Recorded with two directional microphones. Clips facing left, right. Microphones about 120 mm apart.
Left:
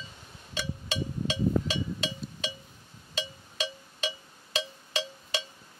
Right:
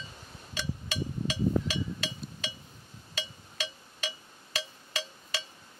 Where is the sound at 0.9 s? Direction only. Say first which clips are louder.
Left 3 dB; 25° left (ahead or behind).